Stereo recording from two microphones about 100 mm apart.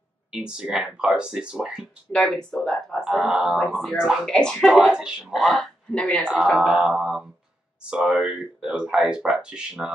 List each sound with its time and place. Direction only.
0.3 s speech: 10° right (ahead or behind)
2.1 s speech: 5° left (ahead or behind)
4.3 s speech: 5° left (ahead or behind)
4.6 s speech: 5° right (ahead or behind)
5.9 s speech: 10° left (ahead or behind)
6.6 s speech: 10° right (ahead or behind)